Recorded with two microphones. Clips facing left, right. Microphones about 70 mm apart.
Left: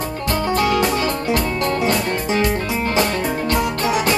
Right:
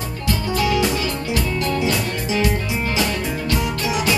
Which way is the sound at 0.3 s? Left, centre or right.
Left.